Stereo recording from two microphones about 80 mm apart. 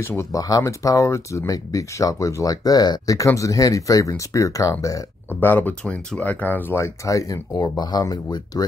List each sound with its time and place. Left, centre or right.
0.0 s speech: left
3.2 s speech: left
5.3 s speech: left
6.8 s speech: left